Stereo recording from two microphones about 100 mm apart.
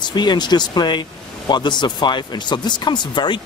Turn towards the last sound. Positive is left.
turn(degrees=50)  # may be behind; listen again after turning